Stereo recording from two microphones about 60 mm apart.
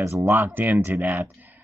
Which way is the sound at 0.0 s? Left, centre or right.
Right.